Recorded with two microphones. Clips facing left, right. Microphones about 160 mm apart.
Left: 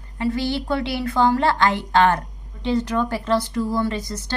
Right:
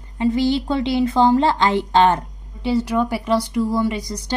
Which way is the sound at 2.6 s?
10° right (ahead or behind).